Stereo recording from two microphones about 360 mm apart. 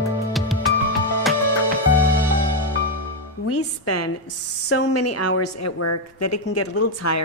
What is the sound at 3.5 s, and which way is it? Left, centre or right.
Music, left.